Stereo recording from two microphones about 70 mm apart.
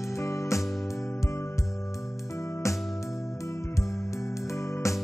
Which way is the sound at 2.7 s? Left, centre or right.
Centre.